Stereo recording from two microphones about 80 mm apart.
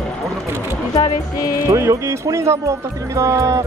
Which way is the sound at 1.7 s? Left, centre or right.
Right.